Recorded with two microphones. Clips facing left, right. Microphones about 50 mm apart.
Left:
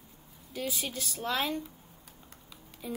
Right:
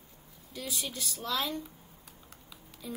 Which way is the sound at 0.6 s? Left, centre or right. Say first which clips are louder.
Left 3 dB; left.